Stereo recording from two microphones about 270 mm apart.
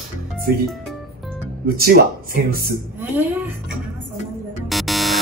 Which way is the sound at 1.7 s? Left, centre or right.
Right.